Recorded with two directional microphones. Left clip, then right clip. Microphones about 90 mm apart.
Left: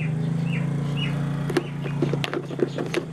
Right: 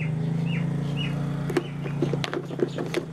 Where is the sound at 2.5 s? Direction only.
5° left (ahead or behind).